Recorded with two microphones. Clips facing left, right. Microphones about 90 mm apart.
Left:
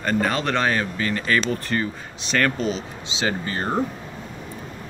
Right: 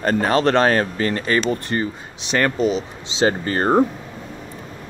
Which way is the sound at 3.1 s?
35° right (ahead or behind).